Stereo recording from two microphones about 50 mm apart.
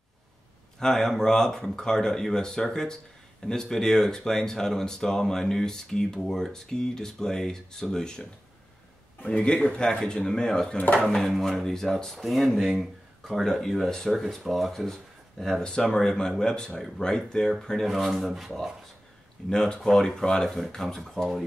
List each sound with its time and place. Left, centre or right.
0.7 s speech: centre
13.4 s speech: centre
14.9 s a sound: centre
15.6 s speech: centre
19.5 s speech: centre